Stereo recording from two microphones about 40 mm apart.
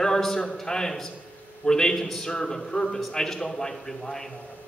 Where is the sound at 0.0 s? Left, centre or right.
Centre.